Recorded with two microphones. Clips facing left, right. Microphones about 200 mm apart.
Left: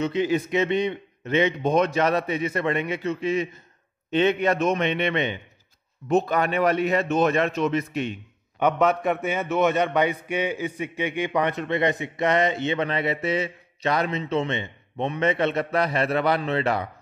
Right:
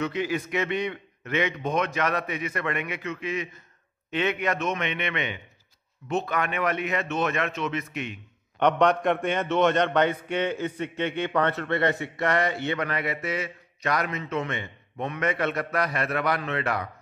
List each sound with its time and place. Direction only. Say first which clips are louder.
0.0 s a man's voice: left 5 dB; 25° left (ahead or behind)
8.5 s a man's voice: even; 5° left (ahead or behind); by 16.9 s 25° left (ahead or behind)